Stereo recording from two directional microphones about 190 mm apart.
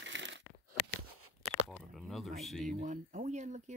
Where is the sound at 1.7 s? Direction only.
Centre (ahead or behind).